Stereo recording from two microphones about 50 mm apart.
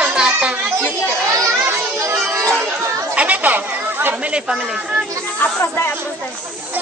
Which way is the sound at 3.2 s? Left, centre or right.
Right.